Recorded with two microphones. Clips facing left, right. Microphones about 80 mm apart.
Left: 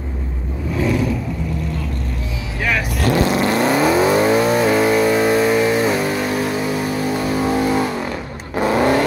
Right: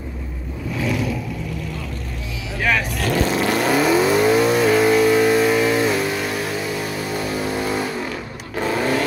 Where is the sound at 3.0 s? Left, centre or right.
Left.